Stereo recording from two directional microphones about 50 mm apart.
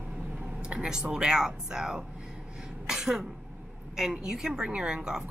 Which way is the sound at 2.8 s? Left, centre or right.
Centre.